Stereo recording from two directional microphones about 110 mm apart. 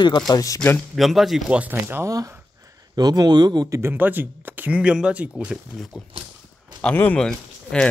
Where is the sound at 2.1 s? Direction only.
30° right (ahead or behind).